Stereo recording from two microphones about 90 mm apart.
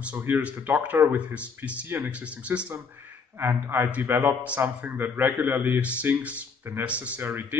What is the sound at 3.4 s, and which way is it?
A man's voice, 25° right (ahead or behind).